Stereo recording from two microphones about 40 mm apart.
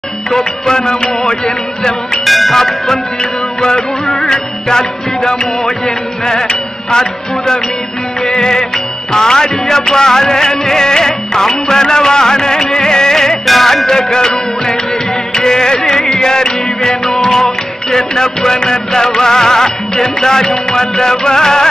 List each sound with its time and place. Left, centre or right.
0.3 s music: centre
2.2 s music: centre
4.1 s music: centre
13.5 s music: centre